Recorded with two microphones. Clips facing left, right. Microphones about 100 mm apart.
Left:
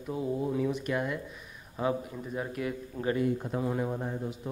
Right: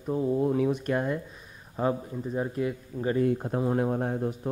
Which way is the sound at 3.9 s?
50° right (ahead or behind).